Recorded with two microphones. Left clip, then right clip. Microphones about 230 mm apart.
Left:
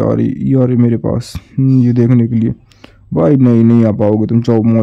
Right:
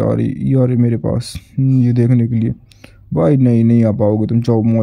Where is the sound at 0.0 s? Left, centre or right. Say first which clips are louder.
Left 3 dB; centre.